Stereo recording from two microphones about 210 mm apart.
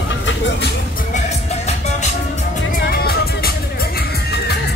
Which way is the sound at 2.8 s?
45° left (ahead or behind).